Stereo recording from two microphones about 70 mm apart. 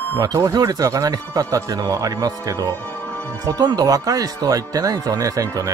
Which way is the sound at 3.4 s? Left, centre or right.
Right.